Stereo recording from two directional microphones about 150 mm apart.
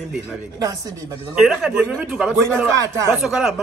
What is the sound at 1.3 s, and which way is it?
A man's voice, 5° right (ahead or behind).